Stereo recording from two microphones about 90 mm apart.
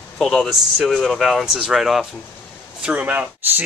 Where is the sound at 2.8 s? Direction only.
15° right (ahead or behind).